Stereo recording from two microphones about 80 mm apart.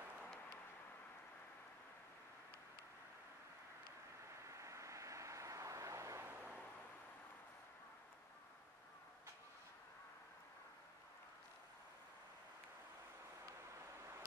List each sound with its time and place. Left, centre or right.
4.5 s vehicle: right